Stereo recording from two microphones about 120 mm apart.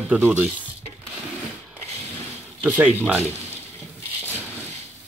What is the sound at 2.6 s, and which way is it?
Speech, 10° right (ahead or behind).